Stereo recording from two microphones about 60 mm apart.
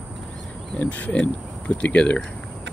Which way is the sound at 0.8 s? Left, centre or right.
Left.